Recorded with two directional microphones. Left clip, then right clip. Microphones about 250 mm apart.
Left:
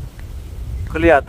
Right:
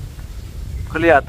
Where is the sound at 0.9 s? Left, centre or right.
Centre.